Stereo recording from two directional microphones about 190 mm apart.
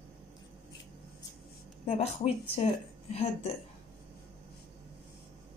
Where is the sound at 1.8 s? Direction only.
35° left (ahead or behind).